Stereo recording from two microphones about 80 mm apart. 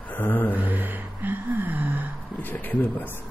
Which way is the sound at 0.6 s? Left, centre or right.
Right.